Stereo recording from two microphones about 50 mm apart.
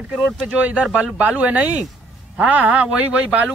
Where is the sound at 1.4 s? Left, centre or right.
Right.